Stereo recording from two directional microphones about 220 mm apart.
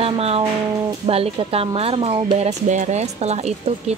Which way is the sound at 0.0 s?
25° right (ahead or behind).